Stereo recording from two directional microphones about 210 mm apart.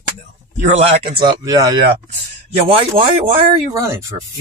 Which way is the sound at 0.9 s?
25° right (ahead or behind).